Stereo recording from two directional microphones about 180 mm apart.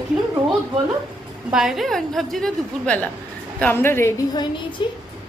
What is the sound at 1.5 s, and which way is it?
A woman's voice, 5° right (ahead or behind).